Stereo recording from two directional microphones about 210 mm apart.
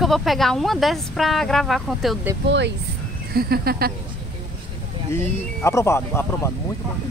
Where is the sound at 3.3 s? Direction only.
45° right (ahead or behind).